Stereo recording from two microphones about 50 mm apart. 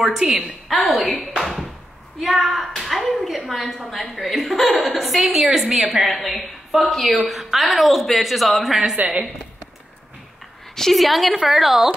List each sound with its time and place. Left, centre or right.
0.0 s a woman's voice: centre
1.4 s a sound: centre
2.1 s a woman's voice: centre
8.9 s a woman's voice: right
10.7 s a woman's voice: centre